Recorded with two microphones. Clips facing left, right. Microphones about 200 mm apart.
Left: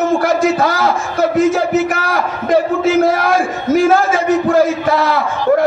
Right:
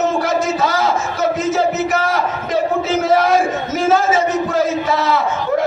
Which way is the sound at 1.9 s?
50° left (ahead or behind).